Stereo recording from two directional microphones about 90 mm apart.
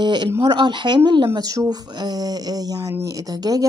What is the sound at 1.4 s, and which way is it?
A man's voice, 45° right (ahead or behind).